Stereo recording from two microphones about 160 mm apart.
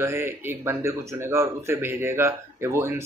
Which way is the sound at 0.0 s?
15° right (ahead or behind).